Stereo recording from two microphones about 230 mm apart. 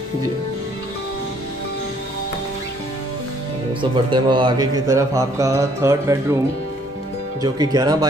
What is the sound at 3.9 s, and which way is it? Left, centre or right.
Speech, right.